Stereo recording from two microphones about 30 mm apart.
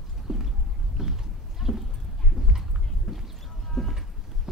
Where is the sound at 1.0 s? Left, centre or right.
Centre.